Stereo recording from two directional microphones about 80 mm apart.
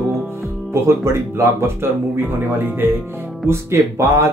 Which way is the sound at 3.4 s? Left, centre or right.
Right.